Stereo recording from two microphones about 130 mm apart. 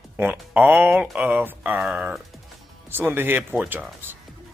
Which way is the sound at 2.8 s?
15° right (ahead or behind).